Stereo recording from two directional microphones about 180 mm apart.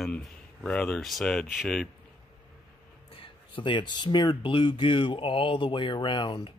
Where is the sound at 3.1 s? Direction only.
30° left (ahead or behind).